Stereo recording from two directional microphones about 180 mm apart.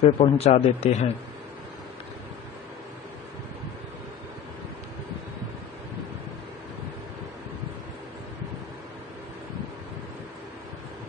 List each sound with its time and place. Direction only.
0.0 s a man's voice: 35° left (ahead or behind)